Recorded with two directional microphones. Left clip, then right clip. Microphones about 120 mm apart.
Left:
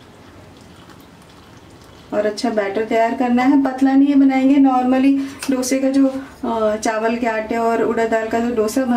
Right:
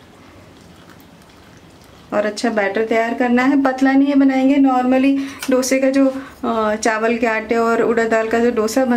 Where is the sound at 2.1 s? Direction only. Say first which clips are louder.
Right 1 dB; 35° right (ahead or behind).